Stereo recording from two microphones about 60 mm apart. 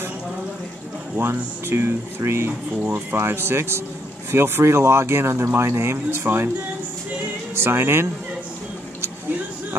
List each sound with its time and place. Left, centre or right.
1.1 s speech: right
7.5 s speech: right